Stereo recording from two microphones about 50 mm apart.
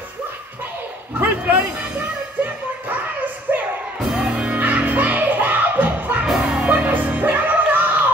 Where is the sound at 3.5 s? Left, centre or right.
Right.